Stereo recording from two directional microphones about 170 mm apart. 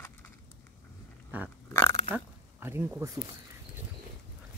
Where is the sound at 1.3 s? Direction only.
10° right (ahead or behind).